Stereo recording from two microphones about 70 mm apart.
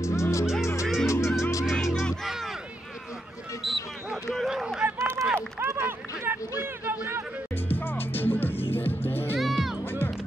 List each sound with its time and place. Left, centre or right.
0.0 s music: left
1.7 s music: centre
3.6 s a sound: centre
4.8 s run: right
6.6 s a sound: right
7.6 s music: left
9.4 s music: centre